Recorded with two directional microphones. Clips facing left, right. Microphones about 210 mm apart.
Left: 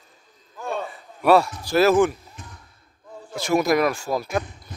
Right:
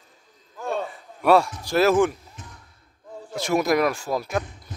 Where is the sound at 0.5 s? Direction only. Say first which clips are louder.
Right 1 dB; 35° right (ahead or behind).